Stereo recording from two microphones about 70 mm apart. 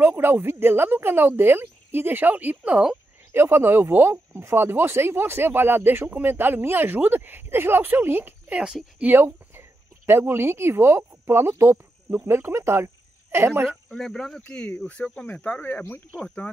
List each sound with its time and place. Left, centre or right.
0.0 s speech: right
3.3 s speech: right
13.8 s speech: centre; by 16.0 s left